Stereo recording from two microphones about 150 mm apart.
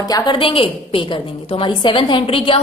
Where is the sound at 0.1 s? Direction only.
30° left (ahead or behind).